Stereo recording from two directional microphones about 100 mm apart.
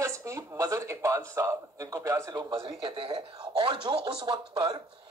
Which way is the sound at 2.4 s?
50° right (ahead or behind).